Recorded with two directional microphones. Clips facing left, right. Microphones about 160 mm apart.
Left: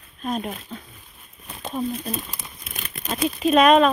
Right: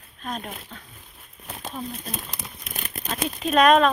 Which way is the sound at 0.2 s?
10° left (ahead or behind).